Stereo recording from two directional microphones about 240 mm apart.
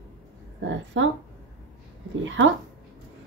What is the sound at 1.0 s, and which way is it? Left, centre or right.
Speech, right.